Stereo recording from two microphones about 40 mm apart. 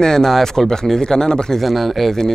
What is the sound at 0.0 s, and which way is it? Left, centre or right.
Speech, centre.